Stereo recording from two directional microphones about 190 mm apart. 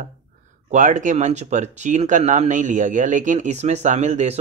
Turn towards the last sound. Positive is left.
turn(degrees=-35)  # may be behind; listen again after turning